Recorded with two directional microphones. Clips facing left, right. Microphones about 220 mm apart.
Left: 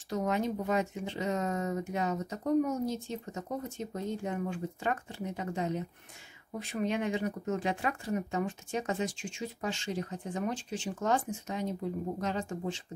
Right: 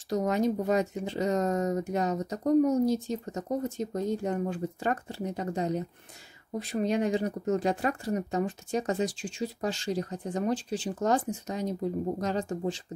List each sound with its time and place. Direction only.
0.1 s speech: 35° right (ahead or behind)